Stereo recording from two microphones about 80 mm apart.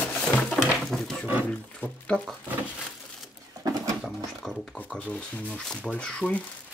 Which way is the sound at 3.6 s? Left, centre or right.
Right.